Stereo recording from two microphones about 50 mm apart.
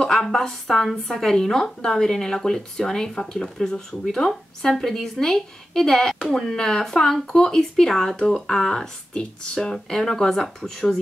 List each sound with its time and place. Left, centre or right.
0.0 s speech: centre